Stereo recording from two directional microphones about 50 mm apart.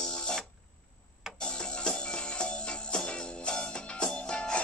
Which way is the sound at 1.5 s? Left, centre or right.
Centre.